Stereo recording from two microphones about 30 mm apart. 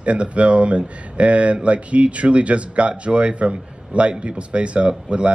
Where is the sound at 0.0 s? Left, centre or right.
Right.